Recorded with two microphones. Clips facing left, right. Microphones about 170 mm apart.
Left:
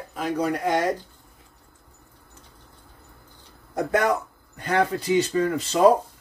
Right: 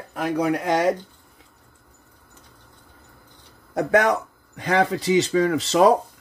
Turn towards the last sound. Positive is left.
turn(degrees=-85)